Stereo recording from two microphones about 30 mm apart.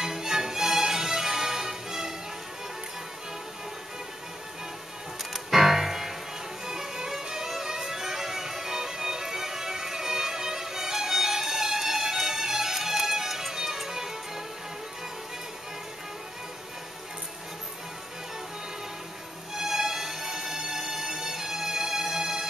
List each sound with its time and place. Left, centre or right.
0.0 s music: centre
5.3 s music: centre
19.5 s music: centre